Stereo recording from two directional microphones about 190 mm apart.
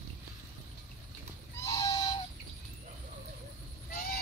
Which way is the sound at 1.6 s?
20° left (ahead or behind).